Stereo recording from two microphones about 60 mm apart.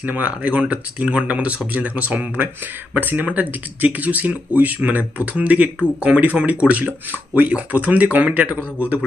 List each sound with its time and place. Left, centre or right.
0.0 s speech: right